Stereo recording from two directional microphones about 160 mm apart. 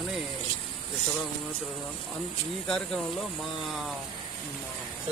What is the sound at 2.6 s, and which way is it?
Speech, 5° left (ahead or behind).